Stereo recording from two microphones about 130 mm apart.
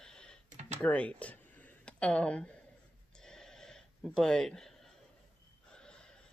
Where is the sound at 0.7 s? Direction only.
10° left (ahead or behind).